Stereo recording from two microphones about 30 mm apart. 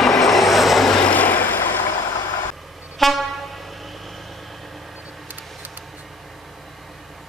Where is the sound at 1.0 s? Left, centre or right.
Left.